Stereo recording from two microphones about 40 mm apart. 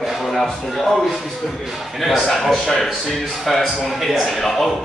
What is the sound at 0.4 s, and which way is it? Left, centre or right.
Speech, centre.